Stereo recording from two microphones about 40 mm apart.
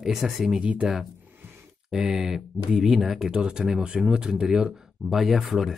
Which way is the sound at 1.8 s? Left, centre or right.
Centre.